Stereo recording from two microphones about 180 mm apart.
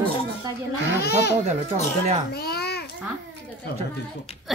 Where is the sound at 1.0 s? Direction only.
65° left (ahead or behind).